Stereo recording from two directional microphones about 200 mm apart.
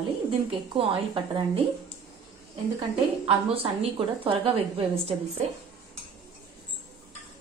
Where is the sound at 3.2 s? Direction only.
30° right (ahead or behind).